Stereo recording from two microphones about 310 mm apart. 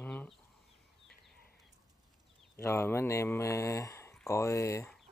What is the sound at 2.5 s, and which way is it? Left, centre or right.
Speech, centre.